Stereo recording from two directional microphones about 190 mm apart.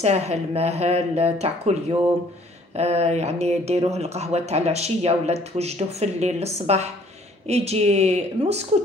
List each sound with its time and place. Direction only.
0.0 s speech: 35° right (ahead or behind)